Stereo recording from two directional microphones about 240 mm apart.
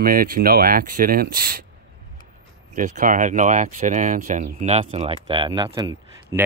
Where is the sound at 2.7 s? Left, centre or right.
Right.